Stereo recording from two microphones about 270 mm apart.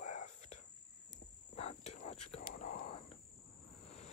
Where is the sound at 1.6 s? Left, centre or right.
Left.